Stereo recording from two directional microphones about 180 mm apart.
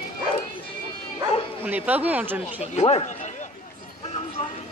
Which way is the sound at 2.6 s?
35° left (ahead or behind).